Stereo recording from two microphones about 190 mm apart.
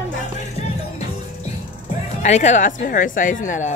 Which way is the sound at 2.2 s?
35° left (ahead or behind).